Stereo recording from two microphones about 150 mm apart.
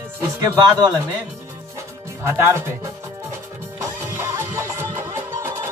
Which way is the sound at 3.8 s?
15° right (ahead or behind).